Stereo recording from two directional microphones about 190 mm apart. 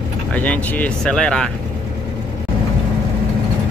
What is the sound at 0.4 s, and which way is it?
Speech, 10° left (ahead or behind).